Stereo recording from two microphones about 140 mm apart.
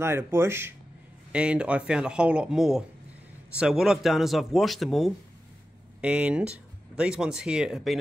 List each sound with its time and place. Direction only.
0.0 s speech: 20° right (ahead or behind); by 8.0 s centre (ahead or behind)